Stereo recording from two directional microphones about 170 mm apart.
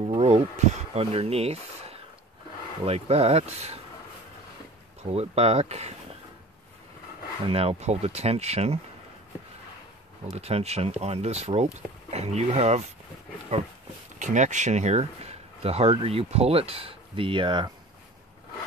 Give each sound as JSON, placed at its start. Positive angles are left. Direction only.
{"t": 0.1, "sound": "speech", "side_deg": -35}
{"t": 5.0, "sound": "speech", "side_deg": -35}
{"t": 7.4, "sound": "speech", "side_deg": -35}
{"t": 10.3, "sound": "speech", "side_deg": -35}
{"t": 14.1, "sound": "speech", "side_deg": -45}